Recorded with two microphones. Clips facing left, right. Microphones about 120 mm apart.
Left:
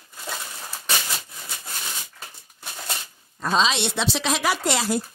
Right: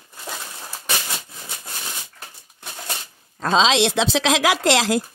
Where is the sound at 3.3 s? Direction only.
90° right.